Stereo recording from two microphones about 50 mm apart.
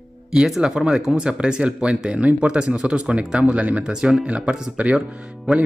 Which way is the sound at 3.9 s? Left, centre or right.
Centre.